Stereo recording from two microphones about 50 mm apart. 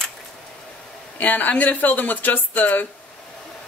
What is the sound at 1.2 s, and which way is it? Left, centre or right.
Speech, left.